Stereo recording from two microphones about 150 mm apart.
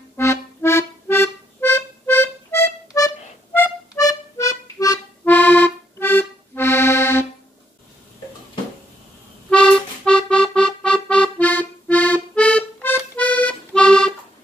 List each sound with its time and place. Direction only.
0.2 s music: 15° left (ahead or behind)
5.2 s accordion: 10° left (ahead or behind)
9.5 s music: 5° left (ahead or behind)